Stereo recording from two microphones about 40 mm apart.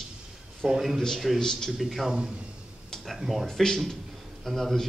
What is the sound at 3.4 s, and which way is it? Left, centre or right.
A man's voice, centre.